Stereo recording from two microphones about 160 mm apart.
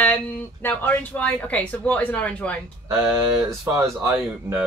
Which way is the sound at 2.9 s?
15° right (ahead or behind).